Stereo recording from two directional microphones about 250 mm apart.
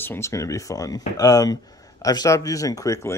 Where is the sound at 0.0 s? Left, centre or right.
Centre.